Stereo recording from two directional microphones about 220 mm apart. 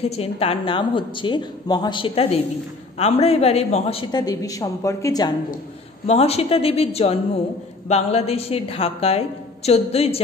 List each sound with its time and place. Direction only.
0.0 s a woman's voice: 30° left (ahead or behind)
4.1 s a woman's voice: 15° left (ahead or behind)
6.0 s a woman's voice: 30° left (ahead or behind)